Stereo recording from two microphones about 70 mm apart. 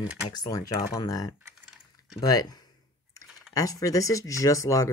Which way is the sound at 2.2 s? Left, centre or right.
Left.